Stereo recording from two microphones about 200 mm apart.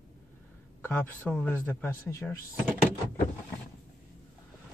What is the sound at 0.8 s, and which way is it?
Speech, 10° left (ahead or behind).